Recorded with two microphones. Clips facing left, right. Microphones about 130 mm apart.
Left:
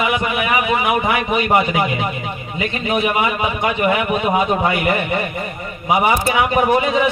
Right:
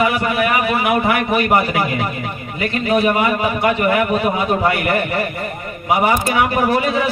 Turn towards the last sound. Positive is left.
turn(degrees=20)  # may be behind; listen again after turning